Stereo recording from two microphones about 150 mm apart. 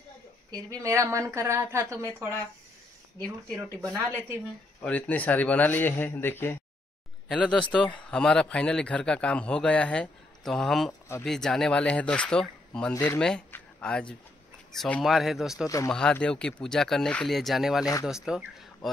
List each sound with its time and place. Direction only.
0.5 s a woman's voice: 25° right (ahead or behind)
3.5 s a woman's voice: 20° right (ahead or behind)
4.8 s a man's voice: 10° left (ahead or behind)
12.9 s speech: 20° left (ahead or behind)
13.2 s speech: 5° left (ahead or behind)